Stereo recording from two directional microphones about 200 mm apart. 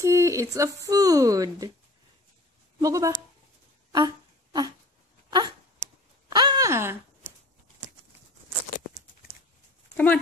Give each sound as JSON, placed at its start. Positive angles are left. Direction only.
{"t": 0.0, "sound": "speech", "side_deg": -15}
{"t": 2.8, "sound": "speech", "side_deg": -15}
{"t": 3.9, "sound": "a sound", "side_deg": -20}
{"t": 6.2, "sound": "groan", "side_deg": -20}
{"t": 9.9, "sound": "speech", "side_deg": 5}